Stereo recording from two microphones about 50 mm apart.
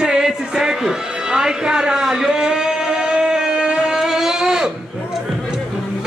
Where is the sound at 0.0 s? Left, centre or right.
Centre.